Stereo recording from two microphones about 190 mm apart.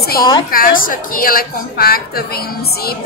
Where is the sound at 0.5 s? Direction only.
50° left (ahead or behind).